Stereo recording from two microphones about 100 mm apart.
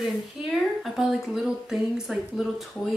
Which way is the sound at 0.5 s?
Centre (ahead or behind).